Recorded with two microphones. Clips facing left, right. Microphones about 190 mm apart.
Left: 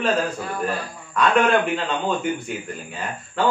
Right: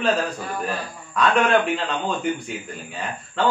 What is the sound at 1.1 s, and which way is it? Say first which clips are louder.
Speech: left 1 dB; centre (ahead or behind).